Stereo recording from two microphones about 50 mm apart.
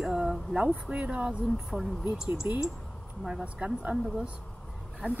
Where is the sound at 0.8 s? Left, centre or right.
Right.